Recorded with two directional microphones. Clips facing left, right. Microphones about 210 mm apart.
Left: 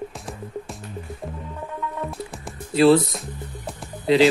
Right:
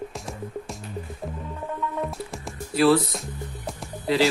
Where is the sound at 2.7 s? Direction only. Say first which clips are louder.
Left 4 dB; 25° left (ahead or behind).